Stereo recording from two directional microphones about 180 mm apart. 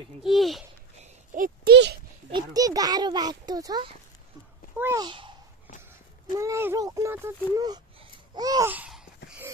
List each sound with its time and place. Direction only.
0.2 s speech: centre (ahead or behind)
1.3 s speech: 45° right (ahead or behind)
1.7 s a child's voice: 70° right (ahead or behind)
2.3 s a child's voice: 20° right (ahead or behind)
5.0 s a child's voice: 25° right (ahead or behind)
6.3 s a child's voice: 15° right (ahead or behind)
8.7 s a sound: 5° right (ahead or behind)